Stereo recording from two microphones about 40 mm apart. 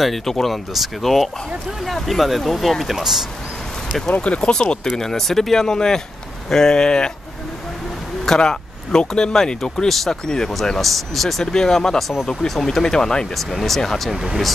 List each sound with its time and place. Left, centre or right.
0.0 s speech: centre
4.2 s speech: left
8.4 s speech: centre
9.8 s speech: centre
10.2 s speech: centre
10.8 s speech: centre
13.4 s speech: centre
14.1 s speech: centre